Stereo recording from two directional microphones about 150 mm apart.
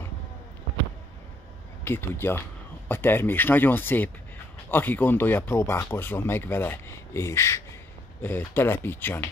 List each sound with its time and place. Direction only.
1.9 s speech: 15° left (ahead or behind)